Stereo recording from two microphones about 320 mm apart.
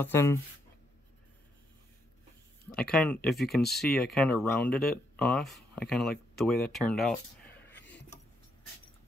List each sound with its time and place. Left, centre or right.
0.0 s speech: centre
2.8 s speech: centre
7.7 s a sound: centre